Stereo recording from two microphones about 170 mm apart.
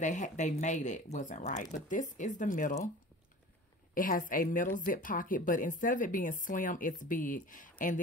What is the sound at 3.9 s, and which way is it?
Speech, 55° left (ahead or behind).